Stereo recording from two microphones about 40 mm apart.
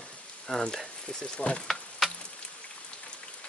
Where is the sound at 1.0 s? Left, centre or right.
Left.